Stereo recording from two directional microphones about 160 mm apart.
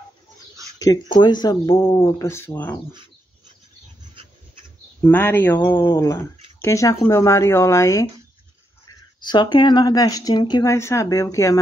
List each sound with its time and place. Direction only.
0.7 s speech: 25° left (ahead or behind)
5.0 s speech: 10° left (ahead or behind)
9.2 s speech: 30° left (ahead or behind)